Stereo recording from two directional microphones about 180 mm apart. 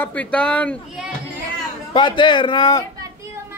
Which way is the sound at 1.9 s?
25° left (ahead or behind).